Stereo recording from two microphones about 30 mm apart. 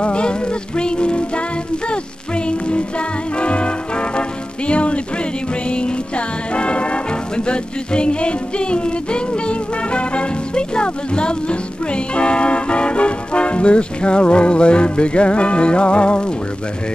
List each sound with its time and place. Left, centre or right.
0.0 s music: left